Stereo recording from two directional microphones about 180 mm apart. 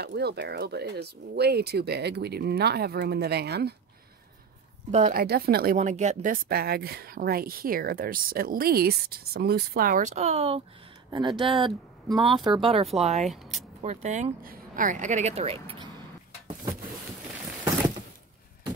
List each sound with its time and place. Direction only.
0.0 s speech: 65° right (ahead or behind)
4.9 s speech: 45° right (ahead or behind)
5.2 s speech: 60° right (ahead or behind)
5.8 s speech: 40° right (ahead or behind)
11.1 s speech: 25° right (ahead or behind)
13.3 s speech: centre (ahead or behind)
13.8 s speech: 40° right (ahead or behind)